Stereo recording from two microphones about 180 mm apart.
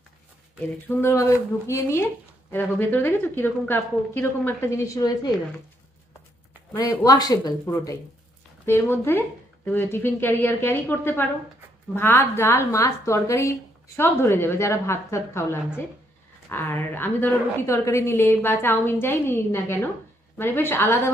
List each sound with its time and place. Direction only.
0.8 s a woman's voice: 15° left (ahead or behind)
6.7 s a woman's voice: 20° left (ahead or behind)